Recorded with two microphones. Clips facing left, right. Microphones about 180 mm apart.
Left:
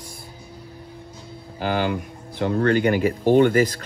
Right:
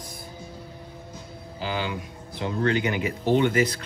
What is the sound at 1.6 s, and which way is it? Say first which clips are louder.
Speech: left 6 dB; 55° left (ahead or behind).